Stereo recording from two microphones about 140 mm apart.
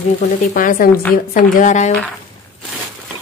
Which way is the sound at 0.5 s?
85° left.